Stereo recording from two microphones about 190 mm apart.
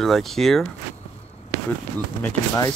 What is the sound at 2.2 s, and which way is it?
Speech, 15° left (ahead or behind).